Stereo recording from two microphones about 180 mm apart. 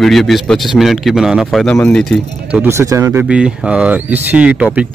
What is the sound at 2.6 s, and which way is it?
Speech, 15° right (ahead or behind).